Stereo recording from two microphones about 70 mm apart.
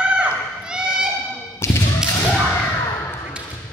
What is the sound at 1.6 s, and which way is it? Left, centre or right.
Thump, left.